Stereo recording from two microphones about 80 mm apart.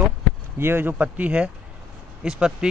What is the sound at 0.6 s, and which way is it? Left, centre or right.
Speech, right.